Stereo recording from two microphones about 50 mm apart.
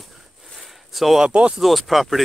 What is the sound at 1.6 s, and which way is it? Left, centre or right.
Speech, centre.